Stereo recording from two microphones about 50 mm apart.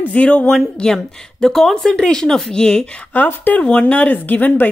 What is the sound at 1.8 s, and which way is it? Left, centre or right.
Speech, centre.